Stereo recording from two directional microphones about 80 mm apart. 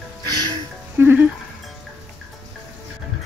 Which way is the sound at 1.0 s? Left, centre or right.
Right.